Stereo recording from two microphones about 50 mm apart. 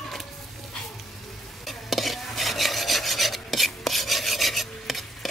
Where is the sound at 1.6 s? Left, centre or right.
Centre.